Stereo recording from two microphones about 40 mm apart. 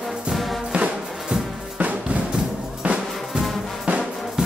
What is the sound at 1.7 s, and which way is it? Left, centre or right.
Music, right.